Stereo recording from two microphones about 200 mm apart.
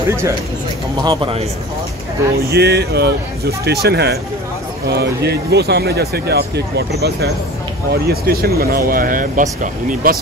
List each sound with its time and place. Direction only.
1.0 s speech: 25° right (ahead or behind)
2.5 s speech: 55° right (ahead or behind)